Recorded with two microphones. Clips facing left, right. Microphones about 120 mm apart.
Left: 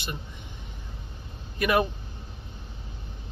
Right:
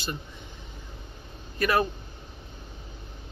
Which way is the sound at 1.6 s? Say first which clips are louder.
Left 1 dB; 15° left (ahead or behind).